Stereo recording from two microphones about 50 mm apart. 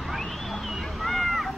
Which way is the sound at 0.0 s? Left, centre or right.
Centre.